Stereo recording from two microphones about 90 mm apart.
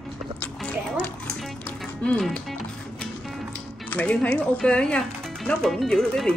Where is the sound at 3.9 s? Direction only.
15° left (ahead or behind).